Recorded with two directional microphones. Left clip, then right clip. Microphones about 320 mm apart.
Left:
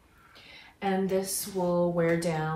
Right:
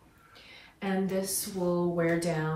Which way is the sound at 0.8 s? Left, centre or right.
Centre.